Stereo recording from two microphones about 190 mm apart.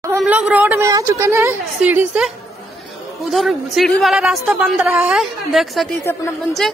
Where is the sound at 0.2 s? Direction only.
5° right (ahead or behind).